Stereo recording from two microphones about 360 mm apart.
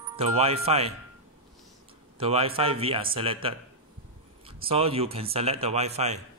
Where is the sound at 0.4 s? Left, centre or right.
Centre.